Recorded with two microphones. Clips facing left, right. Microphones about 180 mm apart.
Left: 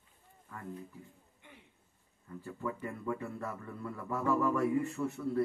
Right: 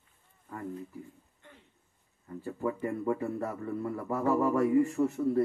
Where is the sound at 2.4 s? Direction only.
30° right (ahead or behind).